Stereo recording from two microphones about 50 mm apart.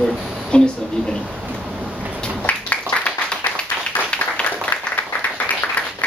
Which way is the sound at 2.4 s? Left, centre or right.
Left.